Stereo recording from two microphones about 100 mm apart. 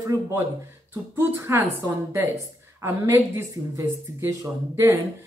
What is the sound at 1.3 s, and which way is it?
Speech, 25° right (ahead or behind).